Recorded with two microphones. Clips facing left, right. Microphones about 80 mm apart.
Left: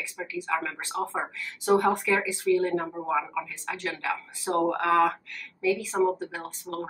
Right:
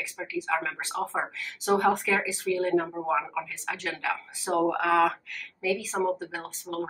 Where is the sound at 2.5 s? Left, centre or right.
Centre.